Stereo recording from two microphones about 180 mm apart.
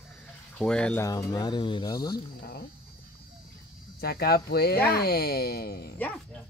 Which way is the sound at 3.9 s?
60° left (ahead or behind).